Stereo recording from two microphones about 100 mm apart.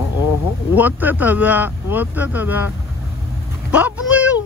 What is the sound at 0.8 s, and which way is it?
Speech, 15° right (ahead or behind).